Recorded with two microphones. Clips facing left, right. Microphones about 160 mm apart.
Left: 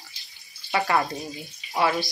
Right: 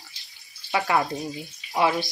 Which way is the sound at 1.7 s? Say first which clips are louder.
Right 1 dB; 15° right (ahead or behind).